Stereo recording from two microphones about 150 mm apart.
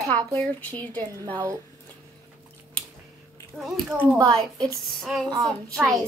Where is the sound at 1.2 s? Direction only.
20° right (ahead or behind).